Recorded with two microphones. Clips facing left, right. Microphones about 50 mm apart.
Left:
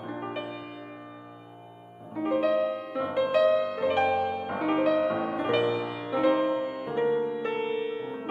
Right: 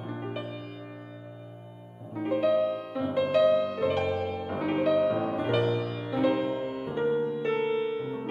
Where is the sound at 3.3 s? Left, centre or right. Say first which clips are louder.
Right 1 dB; left.